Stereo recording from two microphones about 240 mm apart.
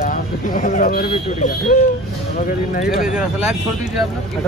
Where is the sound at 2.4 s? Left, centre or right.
Left.